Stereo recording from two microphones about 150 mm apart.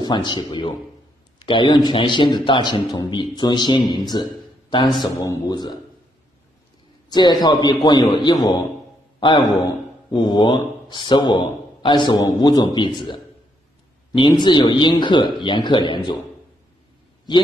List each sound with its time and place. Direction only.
0.0 s a man's voice: 30° left (ahead or behind)
4.1 s a sound: 30° left (ahead or behind)
5.0 s a man's voice: 25° left (ahead or behind)
7.1 s a man's voice: 25° left (ahead or behind)